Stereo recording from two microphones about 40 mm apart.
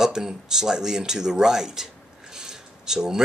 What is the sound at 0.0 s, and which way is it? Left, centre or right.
Speech, centre.